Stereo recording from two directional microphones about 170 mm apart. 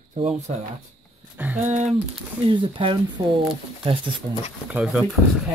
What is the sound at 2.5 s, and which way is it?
Speech, 30° right (ahead or behind).